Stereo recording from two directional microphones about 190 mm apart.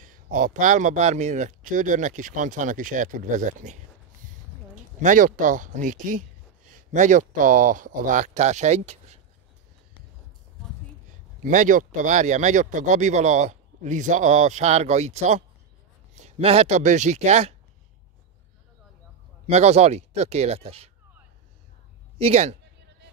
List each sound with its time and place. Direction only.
0.0 s speech: 45° right (ahead or behind)
4.7 s speech: 40° right (ahead or behind)
11.4 s speech: 45° right (ahead or behind)
19.4 s speech: 35° right (ahead or behind)
22.2 s speech: 35° right (ahead or behind)